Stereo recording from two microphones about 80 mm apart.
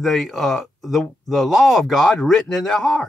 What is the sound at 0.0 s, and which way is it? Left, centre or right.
A man's voice, centre.